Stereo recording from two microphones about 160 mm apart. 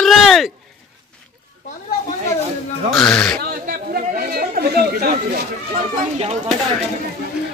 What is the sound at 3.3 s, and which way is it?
Chatter, 65° right (ahead or behind).